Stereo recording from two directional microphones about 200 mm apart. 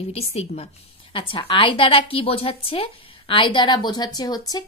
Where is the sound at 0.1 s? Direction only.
30° left (ahead or behind).